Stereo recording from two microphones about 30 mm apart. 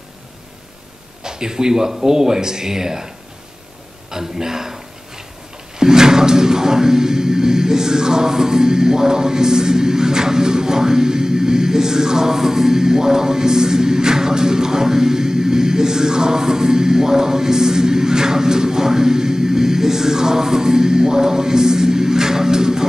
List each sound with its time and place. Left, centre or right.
1.2 s music: right
4.1 s a sound: centre
5.8 s music: right